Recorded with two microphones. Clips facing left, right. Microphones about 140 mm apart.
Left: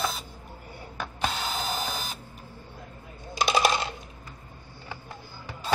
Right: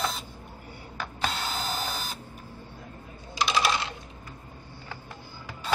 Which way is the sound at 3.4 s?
50° left (ahead or behind).